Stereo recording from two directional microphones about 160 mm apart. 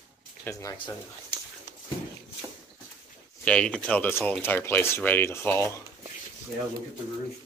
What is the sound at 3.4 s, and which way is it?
Speech, 5° left (ahead or behind).